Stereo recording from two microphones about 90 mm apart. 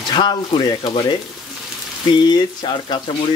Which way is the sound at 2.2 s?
55° left (ahead or behind).